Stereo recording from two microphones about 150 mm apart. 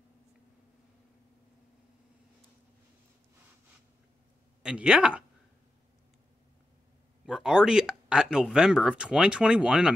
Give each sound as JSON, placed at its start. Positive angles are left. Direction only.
{"t": 4.6, "sound": "speech", "side_deg": -5}
{"t": 7.2, "sound": "speech", "side_deg": -5}